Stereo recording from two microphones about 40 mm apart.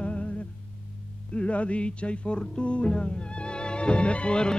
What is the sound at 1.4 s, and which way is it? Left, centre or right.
Music, left.